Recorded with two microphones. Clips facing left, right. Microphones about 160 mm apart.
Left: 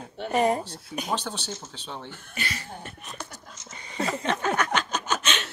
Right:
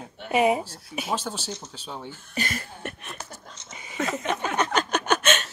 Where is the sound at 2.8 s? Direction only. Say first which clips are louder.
Right 7 dB; 70° right (ahead or behind).